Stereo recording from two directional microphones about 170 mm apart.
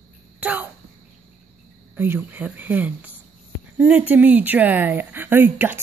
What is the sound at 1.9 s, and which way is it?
Speech, 10° right (ahead or behind).